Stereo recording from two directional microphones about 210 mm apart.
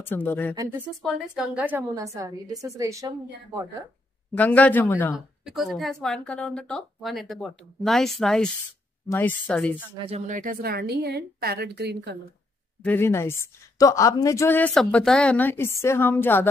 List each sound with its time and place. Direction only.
0.0 s a woman's voice: 10° left (ahead or behind)
0.6 s a woman's voice: 10° right (ahead or behind)
4.4 s a woman's voice: 5° left (ahead or behind)
5.1 s a woman's voice: centre (ahead or behind)
9.9 s a woman's voice: 30° right (ahead or behind); by 12.2 s 55° right (ahead or behind)
12.8 s a woman's voice: 10° left (ahead or behind)